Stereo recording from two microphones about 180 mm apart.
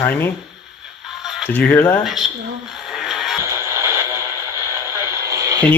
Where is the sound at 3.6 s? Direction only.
15° right (ahead or behind).